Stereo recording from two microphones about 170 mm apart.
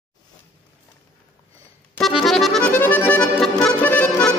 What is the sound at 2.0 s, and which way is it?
Accordion, centre (ahead or behind).